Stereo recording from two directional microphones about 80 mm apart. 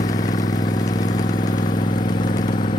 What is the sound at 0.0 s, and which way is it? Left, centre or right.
Vehicle, left.